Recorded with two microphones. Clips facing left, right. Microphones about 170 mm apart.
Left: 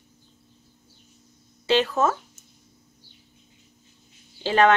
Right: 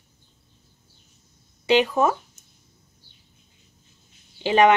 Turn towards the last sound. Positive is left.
turn(degrees=-15)  # may be behind; listen again after turning